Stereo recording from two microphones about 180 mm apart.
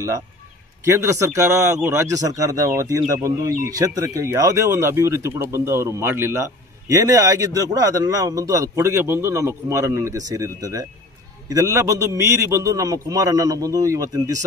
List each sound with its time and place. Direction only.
0.8 s a man's voice: 15° right (ahead or behind)